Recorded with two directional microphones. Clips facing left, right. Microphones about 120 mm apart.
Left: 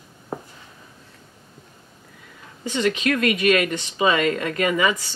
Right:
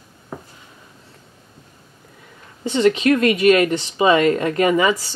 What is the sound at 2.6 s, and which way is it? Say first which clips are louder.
Speech: right 6 dB; 25° right (ahead or behind).